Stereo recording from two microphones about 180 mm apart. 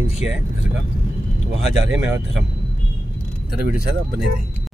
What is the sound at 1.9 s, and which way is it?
Speech, 5° right (ahead or behind).